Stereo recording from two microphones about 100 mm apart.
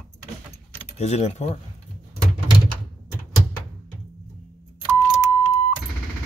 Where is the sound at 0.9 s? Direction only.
90° left.